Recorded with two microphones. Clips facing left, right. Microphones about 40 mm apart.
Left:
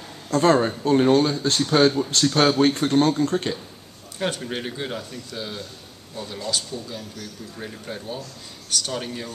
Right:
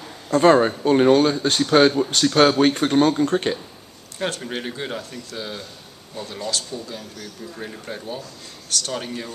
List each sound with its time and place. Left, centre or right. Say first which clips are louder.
0.3 s a man's voice: right 3 dB; right
4.2 s a man's voice: even; centre
6.9 s a man's voice: even; centre